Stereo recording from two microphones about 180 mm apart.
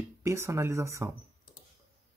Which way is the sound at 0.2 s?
15° right (ahead or behind).